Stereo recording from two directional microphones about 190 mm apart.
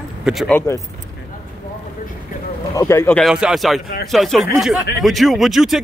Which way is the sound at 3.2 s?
Centre (ahead or behind).